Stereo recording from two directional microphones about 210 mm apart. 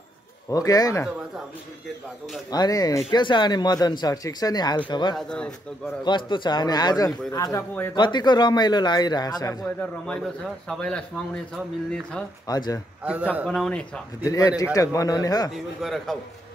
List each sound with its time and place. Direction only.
0.5 s speech: 15° left (ahead or behind)
2.5 s speech: 20° left (ahead or behind)
5.1 s a man's voice: 5° left (ahead or behind)
6.0 s speech: 20° left (ahead or behind)
9.6 s a man's voice: 5° left (ahead or behind)
12.4 s speech: 20° left (ahead or behind)
13.0 s a man's voice: 5° right (ahead or behind)
14.2 s speech: 15° left (ahead or behind)
15.5 s a man's voice: centre (ahead or behind)